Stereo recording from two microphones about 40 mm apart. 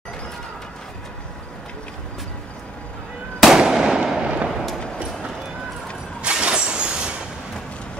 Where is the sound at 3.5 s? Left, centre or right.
Centre.